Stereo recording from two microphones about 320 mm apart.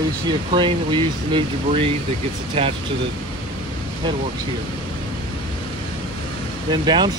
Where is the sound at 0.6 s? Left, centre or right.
Centre.